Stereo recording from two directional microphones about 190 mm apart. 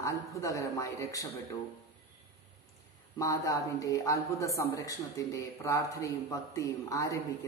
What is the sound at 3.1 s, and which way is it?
Speech, 15° left (ahead or behind).